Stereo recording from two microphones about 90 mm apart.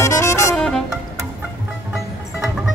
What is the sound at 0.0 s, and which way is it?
Music, 35° left (ahead or behind).